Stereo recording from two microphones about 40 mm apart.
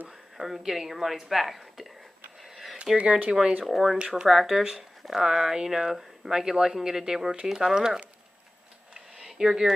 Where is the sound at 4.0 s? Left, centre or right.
Right.